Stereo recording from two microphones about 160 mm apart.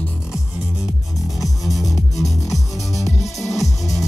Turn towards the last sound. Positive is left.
turn(degrees=20)  # may be behind; listen again after turning